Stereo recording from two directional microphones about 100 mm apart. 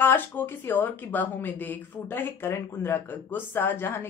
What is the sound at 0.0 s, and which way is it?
Speech, 20° left (ahead or behind).